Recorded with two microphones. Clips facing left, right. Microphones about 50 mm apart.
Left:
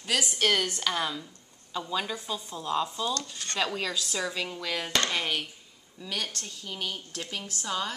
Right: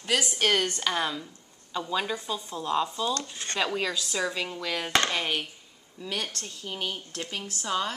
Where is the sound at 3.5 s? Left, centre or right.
Centre.